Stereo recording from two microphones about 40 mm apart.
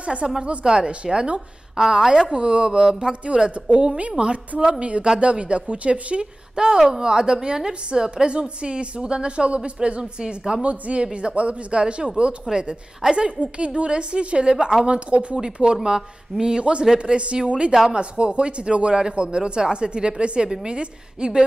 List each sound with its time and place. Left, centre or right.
0.0 s a woman's voice: right
1.8 s a woman's voice: centre
2.3 s a woman's voice: right
10.6 s a woman's voice: right
14.9 s a woman's voice: right
15.3 s a woman's voice: centre